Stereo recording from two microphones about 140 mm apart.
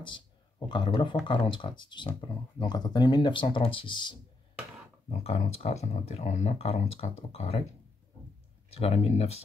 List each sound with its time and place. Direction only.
0.7 s speech: 35° left (ahead or behind)
5.2 s speech: 45° left (ahead or behind)
8.6 s speech: 50° left (ahead or behind)